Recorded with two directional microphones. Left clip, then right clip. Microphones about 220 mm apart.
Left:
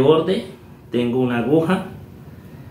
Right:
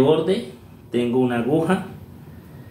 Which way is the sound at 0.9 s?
15° left (ahead or behind).